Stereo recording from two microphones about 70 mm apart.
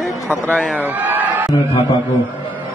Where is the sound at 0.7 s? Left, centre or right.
Right.